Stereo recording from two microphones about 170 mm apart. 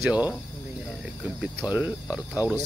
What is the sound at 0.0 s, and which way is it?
Speech, 5° right (ahead or behind).